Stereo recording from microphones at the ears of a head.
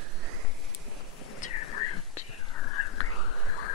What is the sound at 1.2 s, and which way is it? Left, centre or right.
Whispering, left.